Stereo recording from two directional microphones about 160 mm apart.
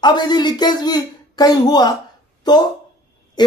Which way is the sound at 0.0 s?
25° left (ahead or behind).